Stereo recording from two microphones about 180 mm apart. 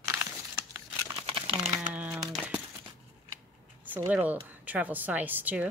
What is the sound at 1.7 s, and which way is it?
Crumpling, 15° right (ahead or behind).